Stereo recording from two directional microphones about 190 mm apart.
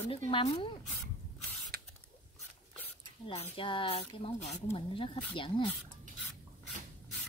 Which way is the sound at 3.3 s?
30° left (ahead or behind).